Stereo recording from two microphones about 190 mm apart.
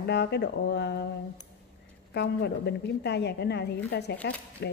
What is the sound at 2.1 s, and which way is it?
A woman's voice, 60° left (ahead or behind).